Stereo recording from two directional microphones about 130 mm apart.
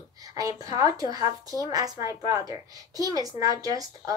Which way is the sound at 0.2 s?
25° right (ahead or behind).